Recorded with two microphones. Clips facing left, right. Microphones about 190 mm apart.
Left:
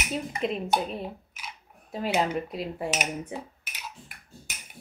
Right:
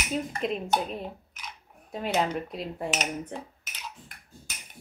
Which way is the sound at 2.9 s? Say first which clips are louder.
Left 1 dB; 10° left (ahead or behind).